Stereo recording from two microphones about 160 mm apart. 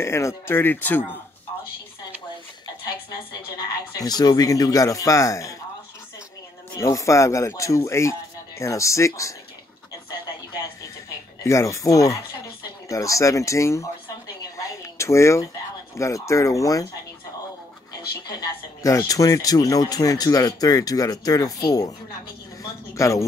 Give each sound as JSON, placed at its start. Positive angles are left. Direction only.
{"t": 0.0, "sound": "speech", "side_deg": 15}
{"t": 4.0, "sound": "speech", "side_deg": 25}
{"t": 6.8, "sound": "speech", "side_deg": 20}
{"t": 11.4, "sound": "speech", "side_deg": 20}
{"t": 15.0, "sound": "speech", "side_deg": 20}
{"t": 18.8, "sound": "speech", "side_deg": 20}